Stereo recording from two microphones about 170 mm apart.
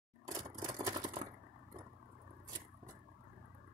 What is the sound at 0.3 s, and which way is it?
Camera, 20° right (ahead or behind).